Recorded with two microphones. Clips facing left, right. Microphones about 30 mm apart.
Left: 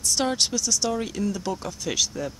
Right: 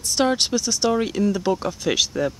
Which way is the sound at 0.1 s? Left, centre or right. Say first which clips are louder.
Right 5 dB; centre.